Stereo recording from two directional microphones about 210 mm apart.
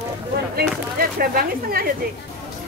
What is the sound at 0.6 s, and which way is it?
Speech, 45° right (ahead or behind).